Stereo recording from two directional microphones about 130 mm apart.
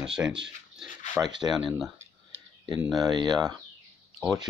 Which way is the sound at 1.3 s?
35° right (ahead or behind).